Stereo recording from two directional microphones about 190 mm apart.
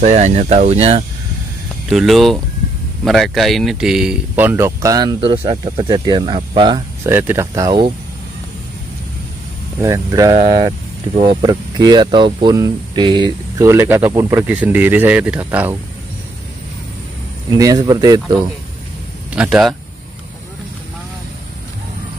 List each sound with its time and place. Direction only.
0.0 s speech: 40° right (ahead or behind)
1.9 s speech: centre (ahead or behind); by 6.8 s 25° right (ahead or behind)
7.1 s speech: 10° right (ahead or behind)
9.8 s speech: 15° right (ahead or behind)
10.3 s speech: 30° right (ahead or behind); by 15.7 s 5° right (ahead or behind)
17.5 s speech: 20° right (ahead or behind)
19.3 s speech: 5° right (ahead or behind)